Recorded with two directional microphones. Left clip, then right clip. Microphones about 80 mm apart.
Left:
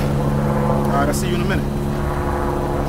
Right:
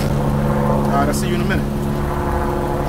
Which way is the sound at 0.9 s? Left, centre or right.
Centre.